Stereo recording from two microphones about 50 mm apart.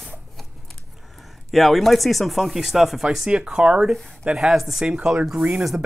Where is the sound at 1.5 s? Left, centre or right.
Centre.